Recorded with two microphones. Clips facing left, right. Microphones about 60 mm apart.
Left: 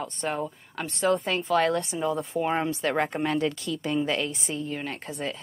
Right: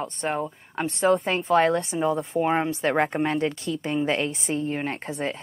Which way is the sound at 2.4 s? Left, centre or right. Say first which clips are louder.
Right 3 dB; centre.